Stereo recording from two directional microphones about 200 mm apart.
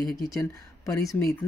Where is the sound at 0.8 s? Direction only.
15° left (ahead or behind).